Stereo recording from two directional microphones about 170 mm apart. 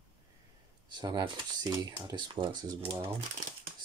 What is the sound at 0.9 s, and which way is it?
Speech, 25° right (ahead or behind).